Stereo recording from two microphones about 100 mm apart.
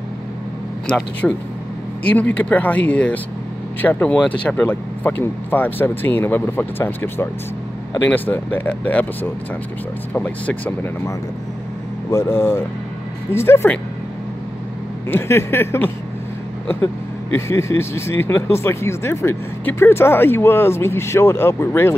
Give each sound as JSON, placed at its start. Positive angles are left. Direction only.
{"t": 0.8, "sound": "speech", "side_deg": 5}
{"t": 12.1, "sound": "speech", "side_deg": 25}
{"t": 15.0, "sound": "speech", "side_deg": 25}